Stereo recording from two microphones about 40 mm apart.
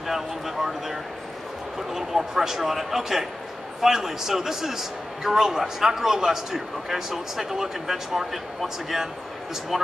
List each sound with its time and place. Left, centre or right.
0.0 s a man's voice: centre